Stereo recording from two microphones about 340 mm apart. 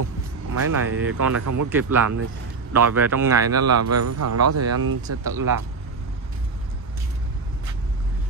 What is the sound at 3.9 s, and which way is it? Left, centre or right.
Speech, right.